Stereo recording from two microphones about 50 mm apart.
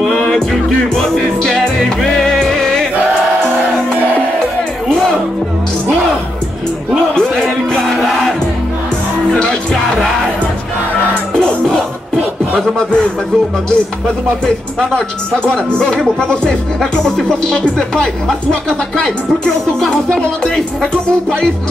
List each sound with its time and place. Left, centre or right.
0.7 s music: centre
4.8 s music: centre
7.2 s music: centre
9.3 s music: centre
12.5 s speech: centre
14.4 s speech: centre